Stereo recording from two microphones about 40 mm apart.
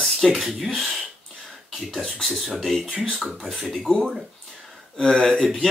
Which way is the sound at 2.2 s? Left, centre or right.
Centre.